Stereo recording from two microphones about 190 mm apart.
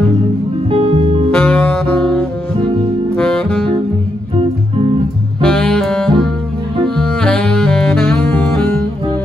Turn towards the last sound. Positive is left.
turn(degrees=5)  # may be behind; listen again after turning